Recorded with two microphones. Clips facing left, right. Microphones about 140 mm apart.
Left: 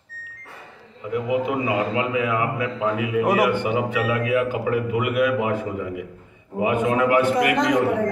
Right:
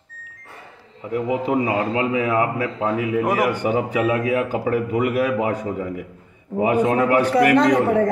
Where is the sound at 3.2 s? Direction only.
10° left (ahead or behind).